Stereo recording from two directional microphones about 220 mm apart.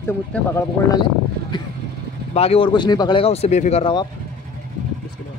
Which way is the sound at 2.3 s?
25° left (ahead or behind).